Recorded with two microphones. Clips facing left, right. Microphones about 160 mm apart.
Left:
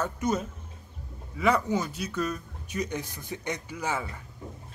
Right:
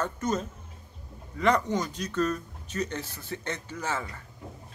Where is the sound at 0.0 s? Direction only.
10° left (ahead or behind).